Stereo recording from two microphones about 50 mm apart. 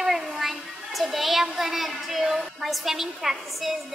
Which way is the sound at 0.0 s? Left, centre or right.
Centre.